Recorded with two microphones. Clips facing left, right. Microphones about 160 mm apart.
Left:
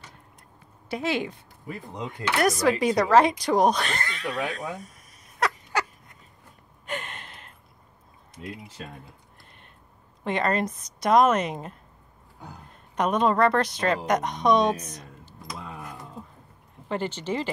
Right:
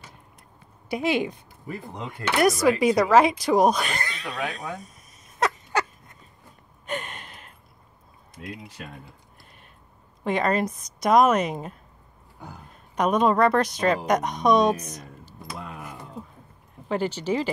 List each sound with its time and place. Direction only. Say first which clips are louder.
0.8 s speech: right 3 dB; 15° right (ahead or behind)
2.2 s speech: right 1 dB; 20° left (ahead or behind)
2.6 s speech: right 2 dB; 10° right (ahead or behind)
4.7 s a sound: even; 20° right (ahead or behind)
6.9 s gasp: right 2 dB; 15° right (ahead or behind)
10.2 s a woman's voice: right 2 dB; 10° right (ahead or behind)
16.9 s speech: right 3 dB; 10° right (ahead or behind)